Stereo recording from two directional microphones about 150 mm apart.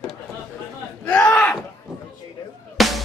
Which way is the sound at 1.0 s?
10° left (ahead or behind).